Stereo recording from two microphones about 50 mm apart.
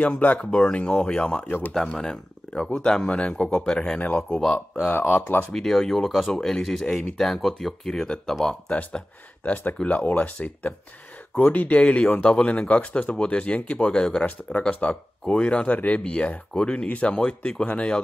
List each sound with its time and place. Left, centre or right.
0.0 s speech: left
0.4 s speech: centre
1.7 s speech: centre
8.6 s speech: left